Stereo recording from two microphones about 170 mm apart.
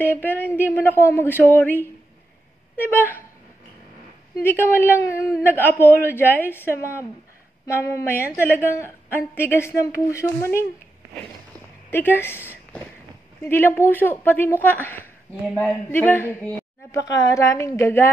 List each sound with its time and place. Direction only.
0.6 s a woman's voice: 10° left (ahead or behind)
4.4 s a woman's voice: 15° left (ahead or behind)
11.9 s a woman's voice: 10° left (ahead or behind)